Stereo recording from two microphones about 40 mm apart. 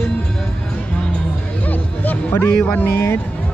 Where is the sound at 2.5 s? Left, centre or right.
Left.